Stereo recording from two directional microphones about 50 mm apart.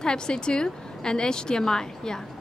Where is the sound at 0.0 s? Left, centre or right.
Centre.